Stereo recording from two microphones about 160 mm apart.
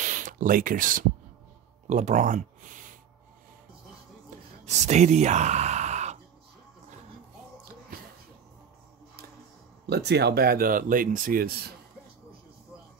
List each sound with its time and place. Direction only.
0.0 s a sound: 55° right (ahead or behind)
1.9 s speech: 45° right (ahead or behind)
4.6 s speech: 45° right (ahead or behind)
9.8 s speech: 90° right; by 11.7 s 75° right (ahead or behind)